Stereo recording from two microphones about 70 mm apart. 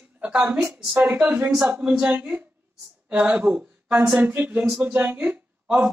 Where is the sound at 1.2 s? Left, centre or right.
Right.